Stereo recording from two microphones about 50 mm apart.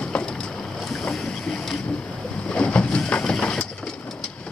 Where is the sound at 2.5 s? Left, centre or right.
Left.